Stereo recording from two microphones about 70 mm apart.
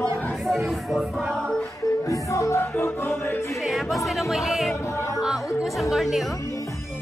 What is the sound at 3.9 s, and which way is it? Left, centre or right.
Speech, centre.